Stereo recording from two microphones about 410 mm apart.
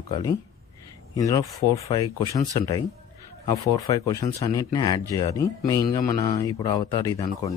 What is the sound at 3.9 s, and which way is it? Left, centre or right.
Speech, centre.